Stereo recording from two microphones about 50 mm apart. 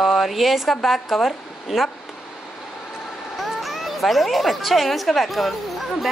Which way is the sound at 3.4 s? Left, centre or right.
Centre.